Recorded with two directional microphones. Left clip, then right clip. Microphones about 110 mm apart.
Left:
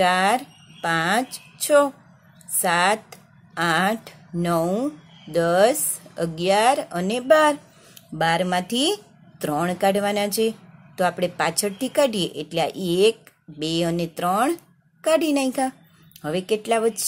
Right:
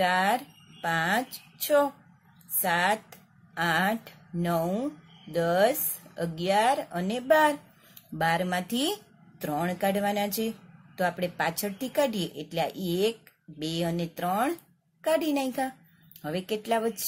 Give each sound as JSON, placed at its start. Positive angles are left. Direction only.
{"t": 0.0, "sound": "speech", "side_deg": 25}